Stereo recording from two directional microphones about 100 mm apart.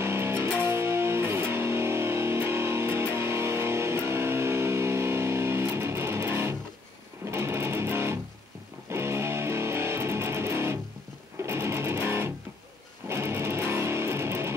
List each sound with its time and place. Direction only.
0.0 s music: 25° right (ahead or behind)